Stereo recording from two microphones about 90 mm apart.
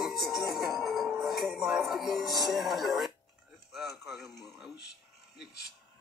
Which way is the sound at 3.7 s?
Centre (ahead or behind).